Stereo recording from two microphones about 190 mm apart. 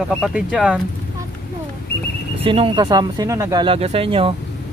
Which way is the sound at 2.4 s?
30° right (ahead or behind).